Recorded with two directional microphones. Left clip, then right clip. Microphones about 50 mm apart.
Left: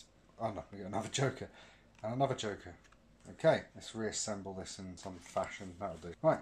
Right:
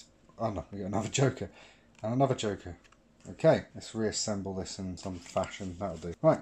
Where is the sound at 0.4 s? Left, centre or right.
Right.